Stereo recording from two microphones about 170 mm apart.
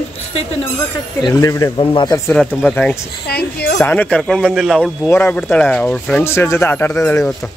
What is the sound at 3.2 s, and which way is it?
Speech, 70° left (ahead or behind).